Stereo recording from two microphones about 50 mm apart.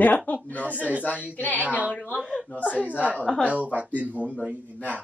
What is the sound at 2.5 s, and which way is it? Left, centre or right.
Speech, left.